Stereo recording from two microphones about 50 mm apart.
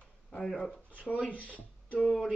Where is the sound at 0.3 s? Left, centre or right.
Centre.